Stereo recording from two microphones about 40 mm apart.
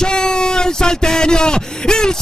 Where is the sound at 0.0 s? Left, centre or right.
Centre.